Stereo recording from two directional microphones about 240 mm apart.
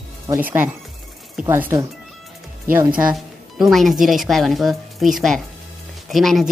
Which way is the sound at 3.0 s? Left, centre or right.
Centre.